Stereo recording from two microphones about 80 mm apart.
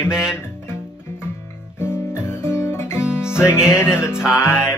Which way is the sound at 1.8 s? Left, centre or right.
Left.